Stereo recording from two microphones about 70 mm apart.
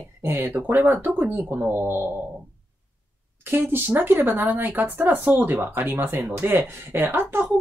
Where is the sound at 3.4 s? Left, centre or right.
Right.